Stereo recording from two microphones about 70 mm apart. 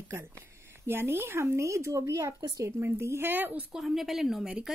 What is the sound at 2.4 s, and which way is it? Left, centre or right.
Speech, right.